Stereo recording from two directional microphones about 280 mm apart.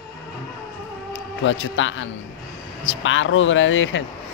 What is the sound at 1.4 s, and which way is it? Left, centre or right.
Speech, left.